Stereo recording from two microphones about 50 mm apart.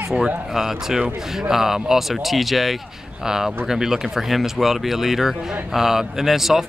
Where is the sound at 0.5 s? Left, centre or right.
Centre.